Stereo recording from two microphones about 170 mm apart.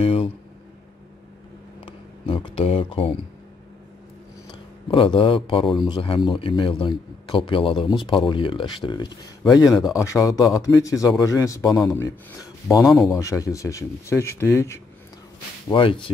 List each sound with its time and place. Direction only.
0.0 s a sound: 35° left (ahead or behind)
1.9 s a sound: 30° left (ahead or behind)
4.8 s a man's voice: 30° left (ahead or behind)
12.8 s speech: centre (ahead or behind)
13.2 s speech: 20° left (ahead or behind)
15.7 s a man's voice: 30° left (ahead or behind)